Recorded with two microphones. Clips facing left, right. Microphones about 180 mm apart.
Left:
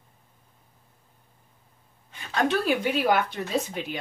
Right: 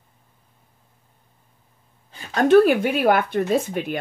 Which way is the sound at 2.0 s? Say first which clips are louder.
Right 3 dB; 35° right (ahead or behind).